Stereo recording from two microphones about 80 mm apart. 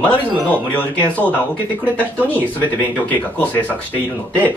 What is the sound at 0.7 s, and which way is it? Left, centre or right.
Speech, centre.